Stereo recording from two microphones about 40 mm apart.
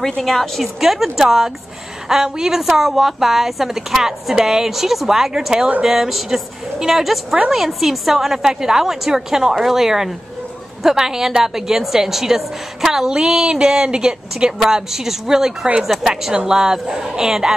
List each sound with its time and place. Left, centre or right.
0.2 s a woman's voice: centre; by 14.5 s right
14.6 s a woman's voice: centre